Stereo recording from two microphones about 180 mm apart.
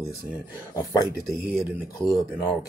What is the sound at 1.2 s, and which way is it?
Speech, 5° right (ahead or behind).